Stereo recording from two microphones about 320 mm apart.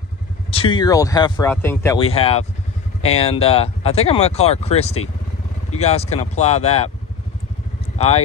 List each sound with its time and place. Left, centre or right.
0.5 s speech: centre